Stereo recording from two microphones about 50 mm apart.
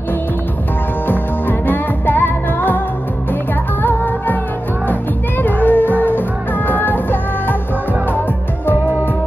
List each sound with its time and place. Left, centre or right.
1.0 s music: left
3.8 s music: left
5.4 s music: left